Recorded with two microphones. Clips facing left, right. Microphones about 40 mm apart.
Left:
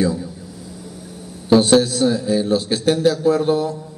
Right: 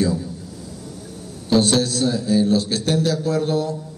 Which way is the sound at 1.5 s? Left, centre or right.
Centre.